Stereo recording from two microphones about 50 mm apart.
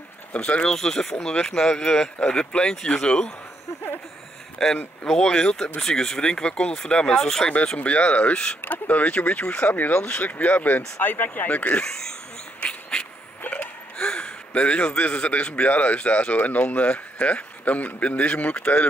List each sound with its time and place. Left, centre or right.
0.3 s speech: left
4.6 s speech: centre
7.7 s speech: left
8.6 s speech: left
9.9 s speech: left
10.3 s speech: left
11.8 s speech: centre
12.5 s duck: left
13.9 s a man's voice: centre